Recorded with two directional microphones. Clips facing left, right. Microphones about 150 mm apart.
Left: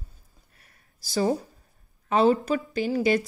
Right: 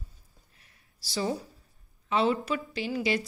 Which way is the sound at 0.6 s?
50° left (ahead or behind).